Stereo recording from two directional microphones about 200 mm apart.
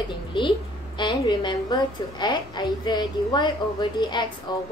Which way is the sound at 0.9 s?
25° left (ahead or behind).